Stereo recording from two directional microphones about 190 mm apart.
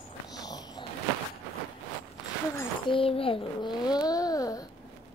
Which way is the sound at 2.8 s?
30° left (ahead or behind).